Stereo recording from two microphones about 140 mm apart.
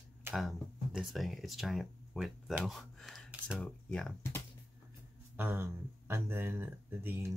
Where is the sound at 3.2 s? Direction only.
10° right (ahead or behind).